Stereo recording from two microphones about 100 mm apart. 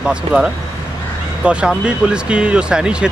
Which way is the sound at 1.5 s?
10° right (ahead or behind).